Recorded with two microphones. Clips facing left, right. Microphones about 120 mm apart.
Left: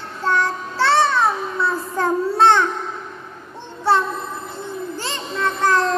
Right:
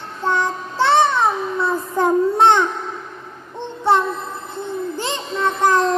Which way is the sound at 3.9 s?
20° right (ahead or behind).